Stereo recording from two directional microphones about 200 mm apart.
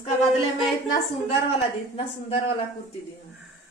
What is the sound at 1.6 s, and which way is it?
Speech, 30° left (ahead or behind).